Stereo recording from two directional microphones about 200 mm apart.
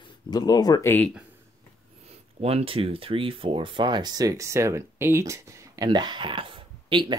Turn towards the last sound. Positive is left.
turn(degrees=-25)  # may be behind; listen again after turning